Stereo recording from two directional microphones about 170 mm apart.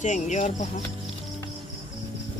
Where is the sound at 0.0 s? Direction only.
45° left (ahead or behind).